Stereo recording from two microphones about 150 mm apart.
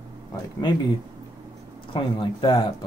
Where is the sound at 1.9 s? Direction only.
35° left (ahead or behind).